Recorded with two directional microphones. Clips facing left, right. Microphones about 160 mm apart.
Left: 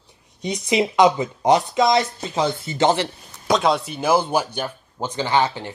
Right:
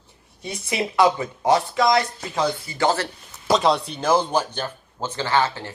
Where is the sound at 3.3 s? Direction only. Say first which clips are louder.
Even; centre (ahead or behind).